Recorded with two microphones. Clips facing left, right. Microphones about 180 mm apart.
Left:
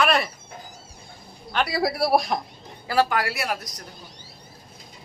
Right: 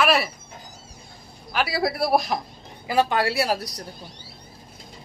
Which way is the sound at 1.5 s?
5° right (ahead or behind).